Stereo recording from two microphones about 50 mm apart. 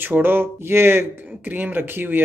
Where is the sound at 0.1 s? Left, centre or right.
Right.